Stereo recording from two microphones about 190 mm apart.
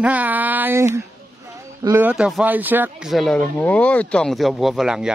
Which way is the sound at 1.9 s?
10° right (ahead or behind).